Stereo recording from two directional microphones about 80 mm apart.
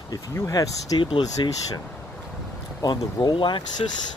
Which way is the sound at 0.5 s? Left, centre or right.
Left.